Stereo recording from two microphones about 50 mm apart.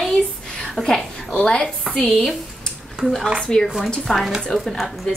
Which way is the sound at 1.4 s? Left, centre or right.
Left.